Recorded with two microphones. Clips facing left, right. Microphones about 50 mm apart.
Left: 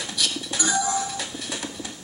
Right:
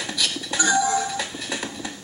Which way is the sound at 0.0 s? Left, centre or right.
Right.